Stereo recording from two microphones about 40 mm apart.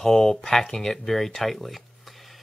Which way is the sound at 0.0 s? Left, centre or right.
Centre.